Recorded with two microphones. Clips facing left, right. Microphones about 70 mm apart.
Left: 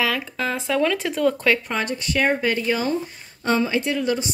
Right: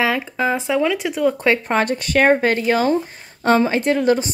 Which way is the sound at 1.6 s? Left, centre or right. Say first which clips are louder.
Right 7 dB; right.